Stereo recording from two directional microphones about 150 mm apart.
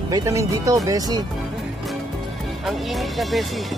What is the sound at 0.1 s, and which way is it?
Speech, 20° right (ahead or behind).